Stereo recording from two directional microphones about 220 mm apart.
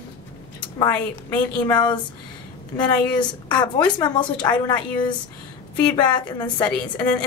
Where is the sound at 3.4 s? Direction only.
20° left (ahead or behind).